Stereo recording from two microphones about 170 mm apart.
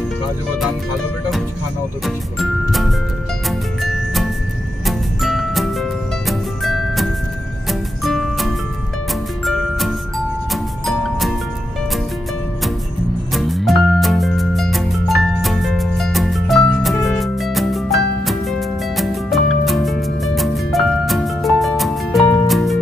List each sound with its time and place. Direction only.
2.0 s music: centre (ahead or behind)
13.3 s music: centre (ahead or behind)